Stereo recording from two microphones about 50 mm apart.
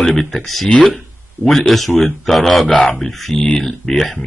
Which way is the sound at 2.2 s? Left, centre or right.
Centre.